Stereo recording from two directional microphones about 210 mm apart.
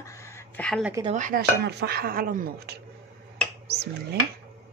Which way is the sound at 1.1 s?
40° right (ahead or behind).